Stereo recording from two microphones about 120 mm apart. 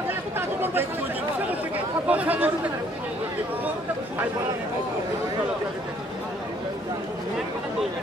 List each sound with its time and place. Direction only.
0.4 s chatter: 20° right (ahead or behind)
2.0 s speech: 10° right (ahead or behind)